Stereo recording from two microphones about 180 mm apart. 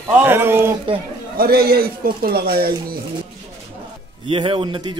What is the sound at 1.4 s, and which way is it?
A man's voice, 60° right (ahead or behind).